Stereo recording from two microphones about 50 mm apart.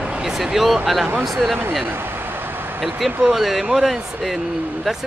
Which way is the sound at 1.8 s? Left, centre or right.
Right.